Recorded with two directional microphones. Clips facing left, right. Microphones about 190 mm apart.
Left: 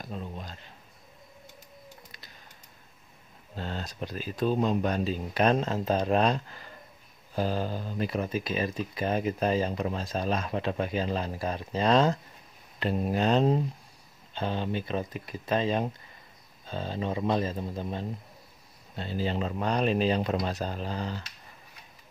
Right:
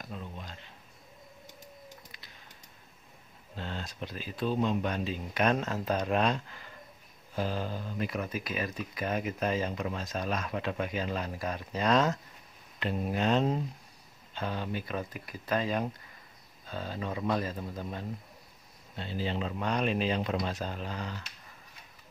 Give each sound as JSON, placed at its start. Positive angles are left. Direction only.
{"t": 0.1, "sound": "a sound", "side_deg": 35}
{"t": 3.5, "sound": "speech", "side_deg": 40}
{"t": 18.9, "sound": "speech", "side_deg": 40}